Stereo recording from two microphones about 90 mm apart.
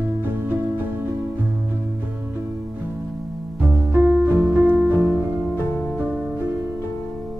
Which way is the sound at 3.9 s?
20° right (ahead or behind).